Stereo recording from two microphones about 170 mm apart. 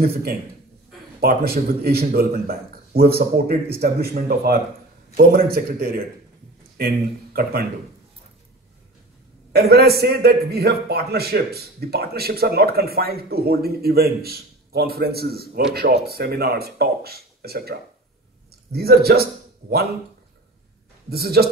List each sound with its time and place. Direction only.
0.0 s a man's voice: 65° right (ahead or behind)
9.5 s a man's voice: 65° right (ahead or behind)
21.1 s a man's voice: 65° right (ahead or behind)